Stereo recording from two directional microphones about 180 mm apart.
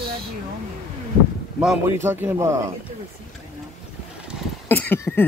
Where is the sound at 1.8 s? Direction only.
15° right (ahead or behind).